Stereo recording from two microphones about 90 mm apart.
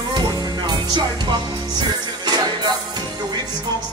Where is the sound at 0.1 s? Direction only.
50° right (ahead or behind).